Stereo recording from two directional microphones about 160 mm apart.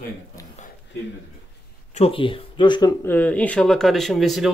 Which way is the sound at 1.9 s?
35° left (ahead or behind).